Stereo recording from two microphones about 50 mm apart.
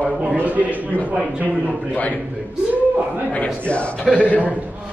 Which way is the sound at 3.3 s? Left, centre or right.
Left.